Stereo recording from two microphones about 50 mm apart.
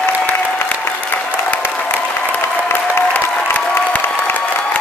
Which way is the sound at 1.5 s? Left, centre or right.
Left.